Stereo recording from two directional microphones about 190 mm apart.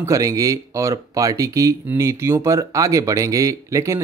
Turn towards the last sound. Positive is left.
turn(degrees=-15)  # may be behind; listen again after turning